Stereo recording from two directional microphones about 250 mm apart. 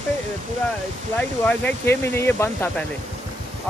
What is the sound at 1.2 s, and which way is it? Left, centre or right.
Speech, centre.